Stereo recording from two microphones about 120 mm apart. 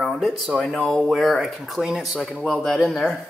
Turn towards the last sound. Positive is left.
turn(degrees=0)  # may be behind; listen again after turning